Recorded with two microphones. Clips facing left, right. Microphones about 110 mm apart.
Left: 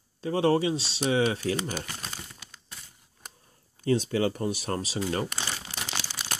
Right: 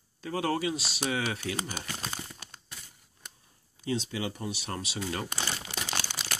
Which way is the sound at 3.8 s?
45° left (ahead or behind).